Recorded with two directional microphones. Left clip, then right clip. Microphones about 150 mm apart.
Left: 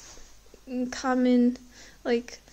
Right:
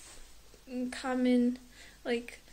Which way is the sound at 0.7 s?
40° left (ahead or behind).